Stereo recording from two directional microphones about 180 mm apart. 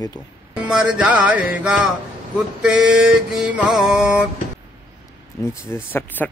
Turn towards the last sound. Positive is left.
turn(degrees=10)  # may be behind; listen again after turning